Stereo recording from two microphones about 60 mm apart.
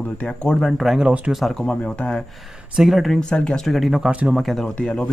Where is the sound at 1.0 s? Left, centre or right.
Centre.